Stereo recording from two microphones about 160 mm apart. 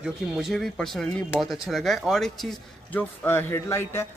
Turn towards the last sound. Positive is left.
turn(degrees=15)  # may be behind; listen again after turning